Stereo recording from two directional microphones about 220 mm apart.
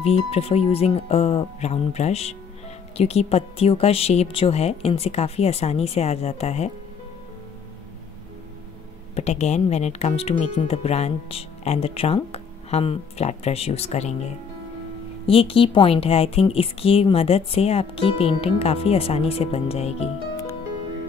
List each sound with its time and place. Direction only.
0.0 s speech: 25° left (ahead or behind)
9.1 s speech: 30° left (ahead or behind)